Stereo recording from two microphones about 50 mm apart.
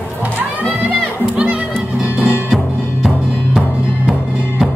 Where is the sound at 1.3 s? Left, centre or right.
Right.